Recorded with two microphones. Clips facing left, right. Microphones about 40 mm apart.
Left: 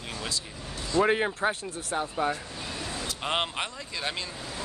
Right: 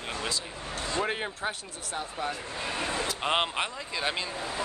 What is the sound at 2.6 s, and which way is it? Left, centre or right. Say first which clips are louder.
Vehicle: right 6 dB; right.